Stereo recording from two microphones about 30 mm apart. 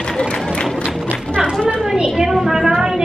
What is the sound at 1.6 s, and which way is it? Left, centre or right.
Speech, right.